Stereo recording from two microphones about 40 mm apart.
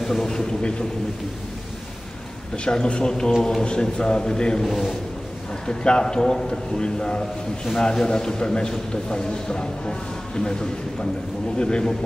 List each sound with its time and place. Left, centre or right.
0.0 s a man's voice: centre
2.5 s a man's voice: left
4.6 s a man's voice: centre
5.7 s a man's voice: left